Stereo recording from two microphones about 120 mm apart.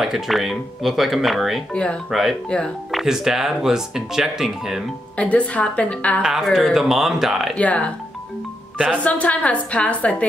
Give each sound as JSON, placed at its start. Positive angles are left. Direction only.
{"t": 0.0, "sound": "speech", "side_deg": 0}
{"t": 5.1, "sound": "a woman's voice", "side_deg": 10}
{"t": 6.2, "sound": "speech", "side_deg": -5}
{"t": 7.5, "sound": "a woman's voice", "side_deg": 10}
{"t": 8.7, "sound": "speech", "side_deg": -10}
{"t": 9.0, "sound": "a woman's voice", "side_deg": 10}